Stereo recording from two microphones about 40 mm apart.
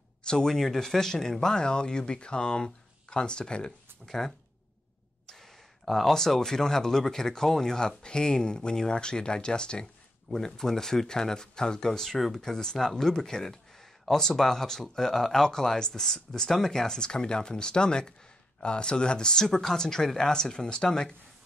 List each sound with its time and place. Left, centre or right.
0.2 s speech: centre
5.9 s speech: centre
10.3 s speech: centre